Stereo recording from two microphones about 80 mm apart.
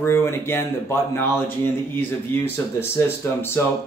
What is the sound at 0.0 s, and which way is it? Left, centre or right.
Speech, left.